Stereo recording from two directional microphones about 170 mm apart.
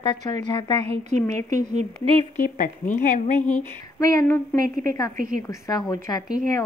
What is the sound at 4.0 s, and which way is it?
A woman's voice, 20° left (ahead or behind).